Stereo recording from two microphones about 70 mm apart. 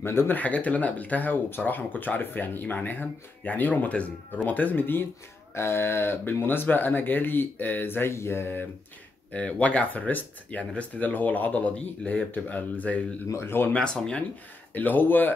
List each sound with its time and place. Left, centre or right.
0.0 s speech: left
0.4 s speech: left
9.3 s speech: centre
13.3 s speech: left
13.7 s speech: centre
14.7 s speech: left